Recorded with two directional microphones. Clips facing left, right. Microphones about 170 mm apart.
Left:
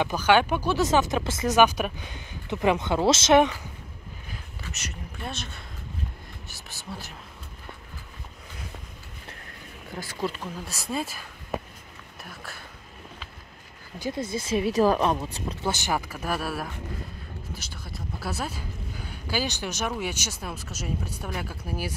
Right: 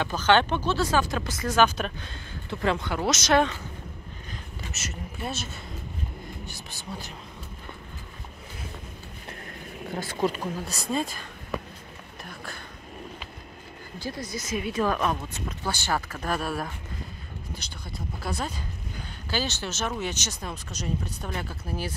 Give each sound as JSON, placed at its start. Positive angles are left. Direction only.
{"t": 0.0, "sound": "a woman's voice", "side_deg": 10}
{"t": 4.7, "sound": "speech", "side_deg": -5}
{"t": 10.7, "sound": "speech", "side_deg": 5}
{"t": 12.3, "sound": "speech", "side_deg": 5}
{"t": 13.9, "sound": "speech", "side_deg": 20}
{"t": 15.6, "sound": "a woman's voice", "side_deg": 20}